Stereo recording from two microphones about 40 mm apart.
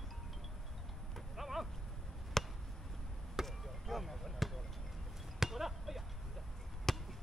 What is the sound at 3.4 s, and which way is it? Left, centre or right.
Basketball bounce, centre.